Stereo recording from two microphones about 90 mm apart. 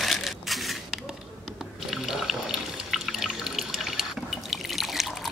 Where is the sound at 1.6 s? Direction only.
5° right (ahead or behind).